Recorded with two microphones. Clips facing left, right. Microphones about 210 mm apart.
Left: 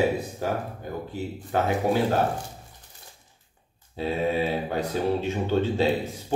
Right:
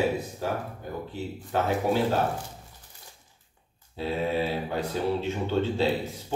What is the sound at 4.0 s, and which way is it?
Speech, 15° left (ahead or behind).